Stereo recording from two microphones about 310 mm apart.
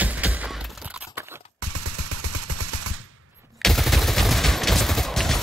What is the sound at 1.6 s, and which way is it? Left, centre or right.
Gunshot, right.